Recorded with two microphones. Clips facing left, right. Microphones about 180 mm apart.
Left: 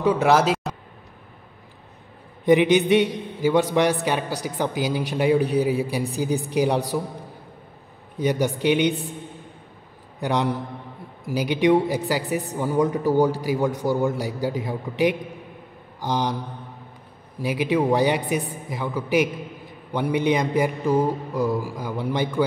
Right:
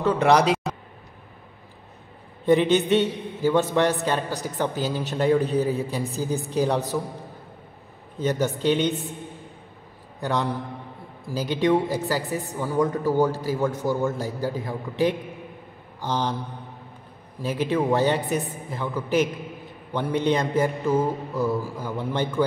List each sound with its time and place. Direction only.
0.0 s a sound: 5° left (ahead or behind)
2.4 s a woman's voice: 15° left (ahead or behind)
8.2 s a woman's voice: 15° left (ahead or behind)
10.2 s a woman's voice: 15° left (ahead or behind)
17.4 s a woman's voice: 10° left (ahead or behind)